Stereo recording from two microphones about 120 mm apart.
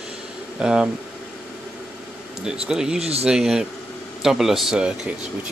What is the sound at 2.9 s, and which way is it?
Speech, 60° right (ahead or behind).